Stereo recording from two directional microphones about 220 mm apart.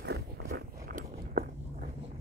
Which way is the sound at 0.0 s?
50° right (ahead or behind).